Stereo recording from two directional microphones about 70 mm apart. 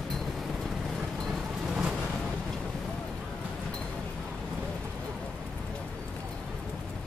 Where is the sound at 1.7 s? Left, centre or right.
Centre.